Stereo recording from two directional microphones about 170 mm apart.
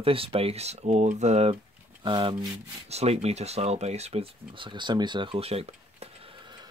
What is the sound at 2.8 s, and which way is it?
Speech, 40° right (ahead or behind).